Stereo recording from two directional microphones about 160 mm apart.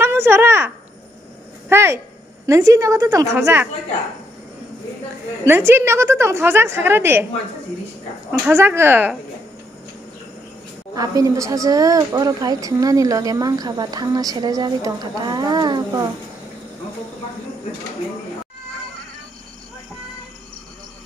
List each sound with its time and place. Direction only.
0.0 s a woman's voice: 15° right (ahead or behind)
1.7 s a woman's voice: 15° right (ahead or behind)
5.4 s a woman's voice: 15° right (ahead or behind)
8.3 s a woman's voice: 15° right (ahead or behind)
11.0 s a woman's voice: 20° right (ahead or behind)